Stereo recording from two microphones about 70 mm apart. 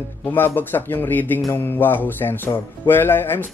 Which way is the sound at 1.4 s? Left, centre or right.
Left.